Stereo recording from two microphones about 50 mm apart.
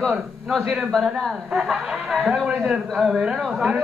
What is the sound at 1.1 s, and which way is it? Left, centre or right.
A man's voice, centre.